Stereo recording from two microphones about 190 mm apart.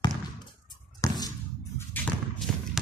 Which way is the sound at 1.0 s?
15° left (ahead or behind).